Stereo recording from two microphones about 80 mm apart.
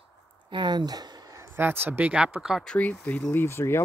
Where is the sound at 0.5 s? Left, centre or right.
Right.